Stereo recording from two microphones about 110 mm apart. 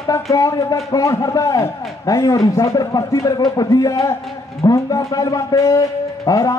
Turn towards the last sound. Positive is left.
turn(degrees=30)  # may be behind; listen again after turning